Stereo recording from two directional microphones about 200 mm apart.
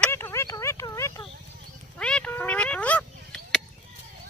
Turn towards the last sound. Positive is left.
turn(degrees=5)  # may be behind; listen again after turning